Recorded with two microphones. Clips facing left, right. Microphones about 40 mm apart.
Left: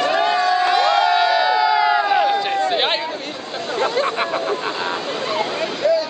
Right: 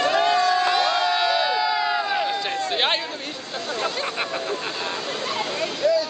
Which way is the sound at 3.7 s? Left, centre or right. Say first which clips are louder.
Left 8 dB; left.